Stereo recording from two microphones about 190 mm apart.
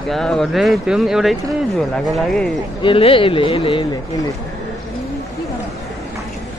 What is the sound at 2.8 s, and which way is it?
A man's voice, 30° left (ahead or behind).